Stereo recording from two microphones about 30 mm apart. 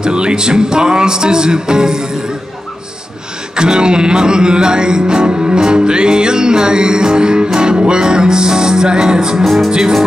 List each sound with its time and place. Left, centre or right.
0.0 s music: right
3.5 s music: right
9.4 s music: centre
9.7 s music: right